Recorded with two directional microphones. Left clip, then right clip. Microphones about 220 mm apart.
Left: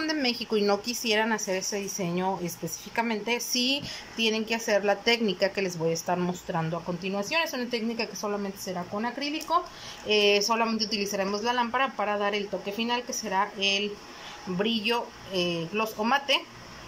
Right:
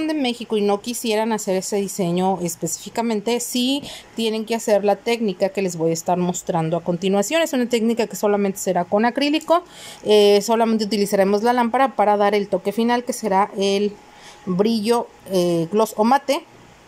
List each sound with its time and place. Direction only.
0.0 s a woman's voice: 15° right (ahead or behind); by 9.6 s 40° right (ahead or behind)
10.0 s a woman's voice: 30° right (ahead or behind)